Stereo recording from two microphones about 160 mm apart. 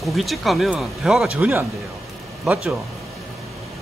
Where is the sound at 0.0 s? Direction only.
Centre (ahead or behind).